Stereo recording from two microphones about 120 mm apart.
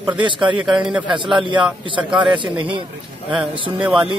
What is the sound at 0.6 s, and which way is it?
Speech, 5° right (ahead or behind).